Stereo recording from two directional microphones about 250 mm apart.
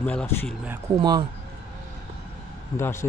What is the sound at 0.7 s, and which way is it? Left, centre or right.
Speech, centre.